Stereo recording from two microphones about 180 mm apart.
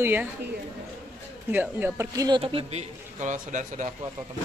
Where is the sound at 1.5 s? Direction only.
10° right (ahead or behind); by 3.9 s 45° right (ahead or behind).